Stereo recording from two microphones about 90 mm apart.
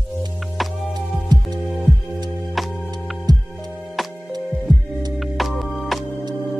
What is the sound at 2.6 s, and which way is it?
Music, centre (ahead or behind).